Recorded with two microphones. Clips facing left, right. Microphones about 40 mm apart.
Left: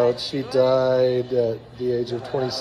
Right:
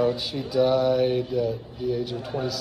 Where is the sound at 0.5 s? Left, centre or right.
Centre.